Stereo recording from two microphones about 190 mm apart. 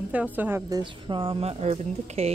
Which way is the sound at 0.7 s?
25° right (ahead or behind).